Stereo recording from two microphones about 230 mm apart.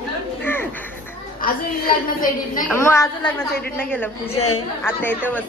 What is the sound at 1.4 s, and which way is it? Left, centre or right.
A woman's voice, left.